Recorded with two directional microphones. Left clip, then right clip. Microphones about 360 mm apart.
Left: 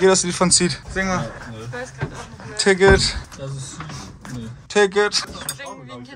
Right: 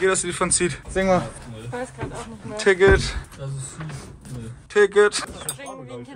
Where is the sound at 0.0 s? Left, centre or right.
Centre.